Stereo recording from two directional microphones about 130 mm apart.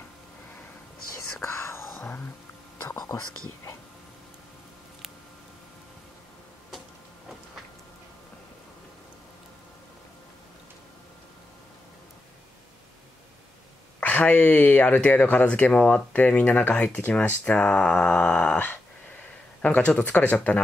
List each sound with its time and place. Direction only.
1.4 s whispering: 20° left (ahead or behind)
3.0 s speech: 25° left (ahead or behind)
13.9 s speech: 10° left (ahead or behind)